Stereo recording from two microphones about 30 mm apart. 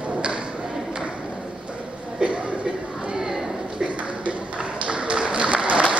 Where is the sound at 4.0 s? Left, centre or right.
Right.